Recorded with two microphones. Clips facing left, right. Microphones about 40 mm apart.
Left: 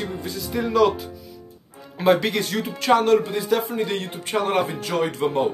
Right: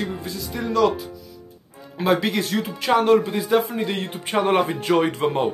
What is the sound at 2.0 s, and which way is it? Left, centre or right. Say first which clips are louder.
Speech: left 1 dB; centre.